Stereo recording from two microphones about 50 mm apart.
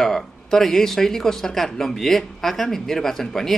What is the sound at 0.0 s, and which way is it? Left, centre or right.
Speech, centre.